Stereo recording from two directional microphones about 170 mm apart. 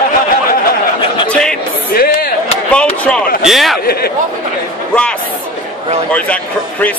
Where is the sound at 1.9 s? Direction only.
65° left (ahead or behind).